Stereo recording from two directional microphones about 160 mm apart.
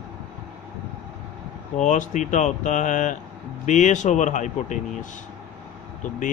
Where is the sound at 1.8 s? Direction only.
50° left (ahead or behind).